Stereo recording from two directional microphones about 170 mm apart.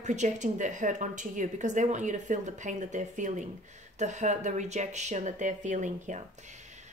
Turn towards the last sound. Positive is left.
turn(degrees=-45)  # may be behind; listen again after turning